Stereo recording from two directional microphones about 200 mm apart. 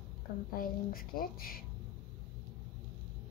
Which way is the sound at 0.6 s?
45° left (ahead or behind).